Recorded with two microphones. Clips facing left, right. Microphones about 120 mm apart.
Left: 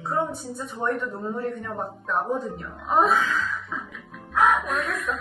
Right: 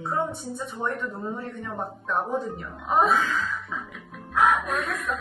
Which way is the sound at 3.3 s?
55° right (ahead or behind).